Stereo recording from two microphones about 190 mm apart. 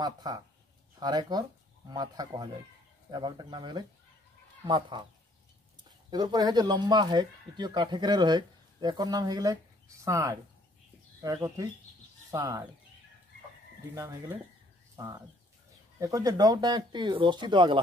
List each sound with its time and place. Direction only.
0.0 s speech: 20° right (ahead or behind)
6.0 s speech: 20° right (ahead or behind)
15.0 s speech: 15° right (ahead or behind)